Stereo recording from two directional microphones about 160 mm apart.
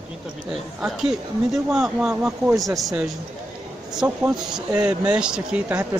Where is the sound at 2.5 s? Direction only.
20° right (ahead or behind).